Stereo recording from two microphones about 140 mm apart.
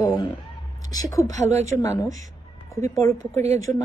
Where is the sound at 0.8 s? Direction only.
25° left (ahead or behind).